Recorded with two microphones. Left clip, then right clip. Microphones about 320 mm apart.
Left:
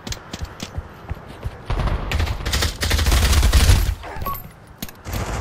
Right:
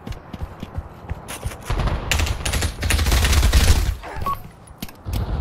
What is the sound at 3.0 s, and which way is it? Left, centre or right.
Fusillade, centre.